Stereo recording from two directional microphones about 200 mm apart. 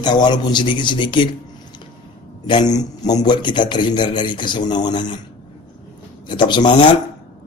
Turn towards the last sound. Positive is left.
turn(degrees=25)  # may be behind; listen again after turning